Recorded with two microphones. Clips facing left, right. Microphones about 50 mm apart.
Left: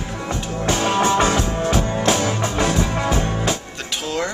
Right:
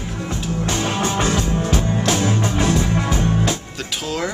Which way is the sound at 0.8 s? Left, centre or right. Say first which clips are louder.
Left 6 dB; left.